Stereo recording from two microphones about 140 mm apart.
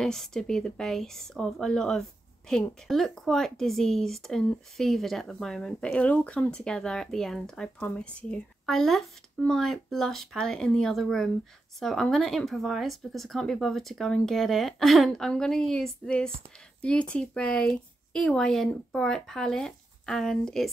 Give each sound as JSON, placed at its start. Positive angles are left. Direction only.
{"t": 0.0, "sound": "speech", "side_deg": 5}